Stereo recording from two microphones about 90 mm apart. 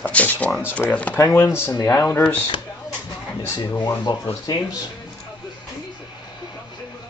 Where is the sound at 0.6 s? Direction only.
25° left (ahead or behind).